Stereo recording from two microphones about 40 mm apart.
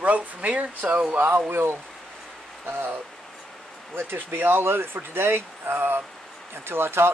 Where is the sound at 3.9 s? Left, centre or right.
Right.